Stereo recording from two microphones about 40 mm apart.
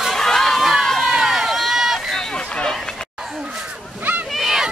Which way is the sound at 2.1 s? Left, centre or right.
Centre.